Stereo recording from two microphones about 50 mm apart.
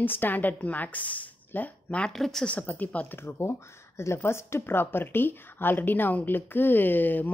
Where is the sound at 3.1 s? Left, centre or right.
Left.